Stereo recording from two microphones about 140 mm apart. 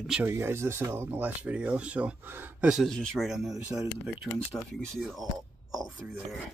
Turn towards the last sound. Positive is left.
turn(degrees=0)  # may be behind; listen again after turning